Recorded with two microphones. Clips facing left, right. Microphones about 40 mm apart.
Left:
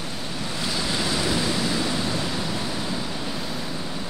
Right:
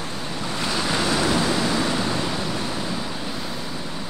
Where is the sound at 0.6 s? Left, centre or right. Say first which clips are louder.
Right 3 dB; right.